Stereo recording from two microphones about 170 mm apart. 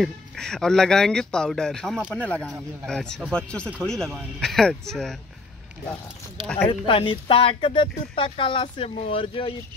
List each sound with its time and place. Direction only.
0.0 s speech: 5° left (ahead or behind)
2.2 s speech: 5° left (ahead or behind)
6.4 s speech: 10° left (ahead or behind)
6.7 s speech: 30° left (ahead or behind)